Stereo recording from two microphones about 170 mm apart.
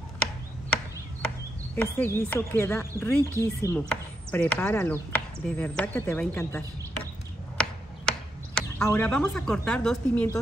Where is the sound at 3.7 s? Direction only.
10° left (ahead or behind).